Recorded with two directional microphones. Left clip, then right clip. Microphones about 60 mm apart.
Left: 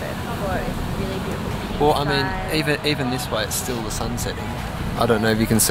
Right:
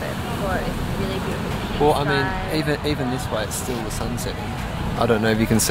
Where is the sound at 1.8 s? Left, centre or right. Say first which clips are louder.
Even; left.